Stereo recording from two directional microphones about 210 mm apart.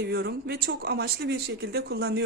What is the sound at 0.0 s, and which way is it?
A woman's voice, 50° right (ahead or behind).